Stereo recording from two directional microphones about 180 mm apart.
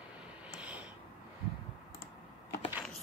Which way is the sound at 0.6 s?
5° right (ahead or behind).